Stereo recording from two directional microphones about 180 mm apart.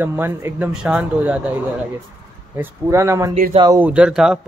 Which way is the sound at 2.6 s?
15° right (ahead or behind).